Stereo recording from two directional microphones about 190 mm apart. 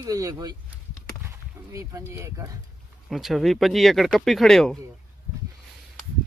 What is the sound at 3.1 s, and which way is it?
Speech, centre (ahead or behind).